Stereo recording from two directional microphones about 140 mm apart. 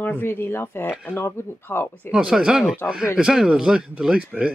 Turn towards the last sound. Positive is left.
turn(degrees=-10)  # may be behind; listen again after turning